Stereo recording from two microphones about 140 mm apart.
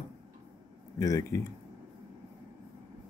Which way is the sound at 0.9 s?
25° left (ahead or behind).